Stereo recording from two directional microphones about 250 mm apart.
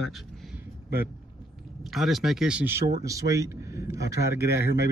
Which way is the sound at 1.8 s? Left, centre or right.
Centre.